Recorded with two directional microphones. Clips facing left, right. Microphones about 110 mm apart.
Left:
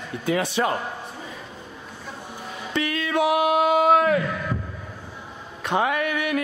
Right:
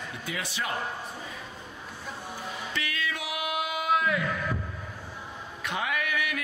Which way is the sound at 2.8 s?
35° left (ahead or behind).